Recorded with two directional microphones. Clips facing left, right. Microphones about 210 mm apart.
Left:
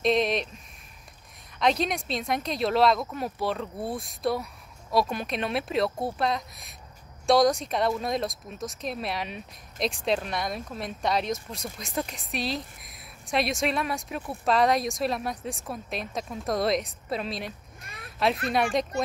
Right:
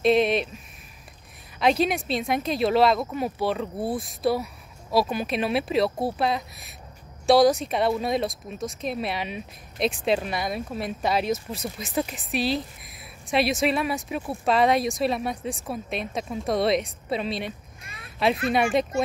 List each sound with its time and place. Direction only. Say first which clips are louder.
0.0 s speech: right 4 dB; 5° right (ahead or behind)
1.6 s speech: right 3 dB; 5° right (ahead or behind)
5.9 s speech: right 3 dB; 30° right (ahead or behind)
6.1 s speech: right 2 dB; 5° right (ahead or behind)